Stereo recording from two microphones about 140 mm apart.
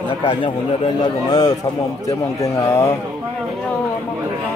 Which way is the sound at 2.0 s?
20° left (ahead or behind).